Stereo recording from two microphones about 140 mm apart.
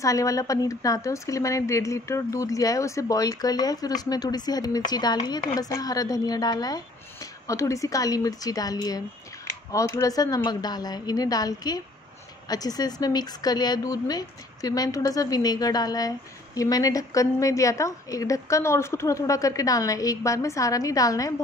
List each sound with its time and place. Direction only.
0.0 s a woman's voice: 25° left (ahead or behind)